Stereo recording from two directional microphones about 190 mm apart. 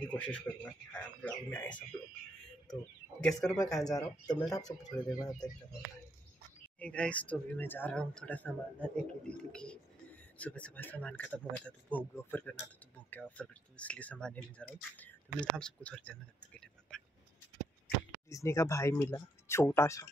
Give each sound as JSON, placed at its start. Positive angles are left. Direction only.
{"t": 0.0, "sound": "speech", "side_deg": 5}
{"t": 3.2, "sound": "speech", "side_deg": 5}
{"t": 3.7, "sound": "speech", "side_deg": 20}
{"t": 6.8, "sound": "speech", "side_deg": 5}
{"t": 18.3, "sound": "speech", "side_deg": 15}